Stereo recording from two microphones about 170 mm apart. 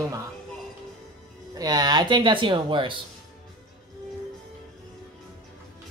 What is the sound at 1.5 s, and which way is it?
Speech, 25° right (ahead or behind).